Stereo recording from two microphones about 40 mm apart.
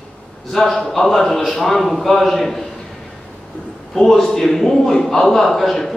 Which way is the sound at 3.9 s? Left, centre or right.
Centre.